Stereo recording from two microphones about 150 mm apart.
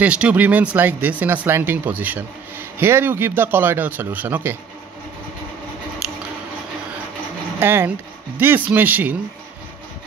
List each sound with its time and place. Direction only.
0.0 s speech: 10° right (ahead or behind)
7.5 s speech: 15° right (ahead or behind)